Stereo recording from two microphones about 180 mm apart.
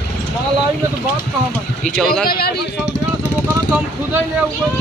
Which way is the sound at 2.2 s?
60° left (ahead or behind).